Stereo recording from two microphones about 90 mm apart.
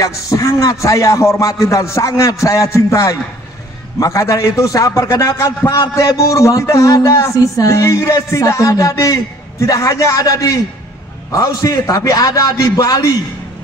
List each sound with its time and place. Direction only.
0.0 s a man's voice: 40° left (ahead or behind)